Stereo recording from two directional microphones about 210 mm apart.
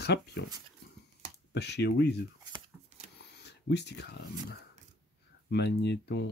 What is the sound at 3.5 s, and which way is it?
Speech, 55° left (ahead or behind).